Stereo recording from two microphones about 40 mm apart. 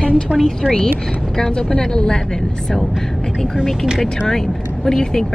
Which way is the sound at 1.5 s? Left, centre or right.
Left.